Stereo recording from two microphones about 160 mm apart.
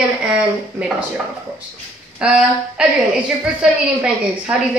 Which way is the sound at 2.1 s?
5° right (ahead or behind).